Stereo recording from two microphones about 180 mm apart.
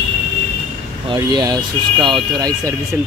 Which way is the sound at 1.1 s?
20° right (ahead or behind).